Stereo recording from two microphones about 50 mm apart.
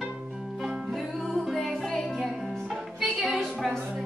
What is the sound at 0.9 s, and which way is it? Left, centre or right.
Music, centre.